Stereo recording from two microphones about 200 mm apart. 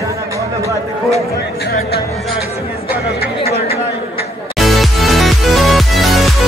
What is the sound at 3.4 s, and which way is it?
Chatter, 50° left (ahead or behind).